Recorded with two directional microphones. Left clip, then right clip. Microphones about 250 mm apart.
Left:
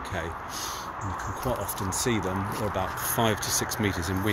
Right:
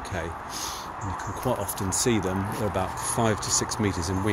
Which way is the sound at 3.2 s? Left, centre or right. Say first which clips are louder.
Right 1 dB; centre.